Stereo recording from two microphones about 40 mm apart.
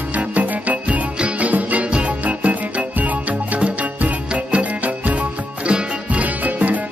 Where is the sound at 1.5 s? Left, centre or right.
Right.